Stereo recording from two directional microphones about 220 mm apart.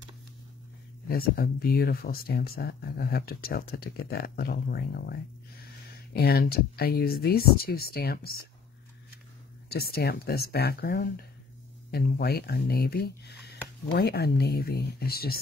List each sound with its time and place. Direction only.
1.0 s speech: 45° left (ahead or behind)
9.7 s speech: 45° left (ahead or behind)